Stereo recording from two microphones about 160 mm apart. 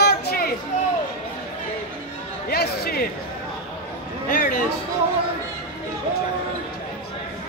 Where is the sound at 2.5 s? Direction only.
90° left.